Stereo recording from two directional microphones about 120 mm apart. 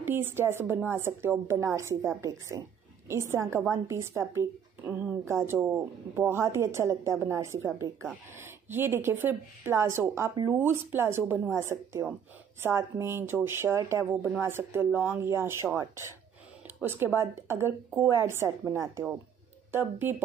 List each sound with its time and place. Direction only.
0.0 s a woman's voice: 20° right (ahead or behind)
16.8 s a woman's voice: 20° right (ahead or behind)